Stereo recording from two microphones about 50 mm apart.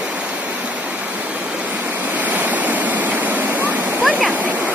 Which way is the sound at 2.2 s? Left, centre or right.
Right.